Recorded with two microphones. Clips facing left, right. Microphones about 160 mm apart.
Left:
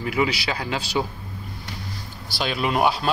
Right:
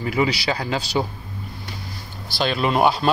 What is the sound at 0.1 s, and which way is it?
Speech, 35° right (ahead or behind).